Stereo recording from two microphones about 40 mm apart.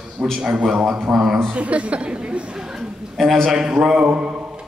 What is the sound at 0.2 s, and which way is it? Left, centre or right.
Speech, right.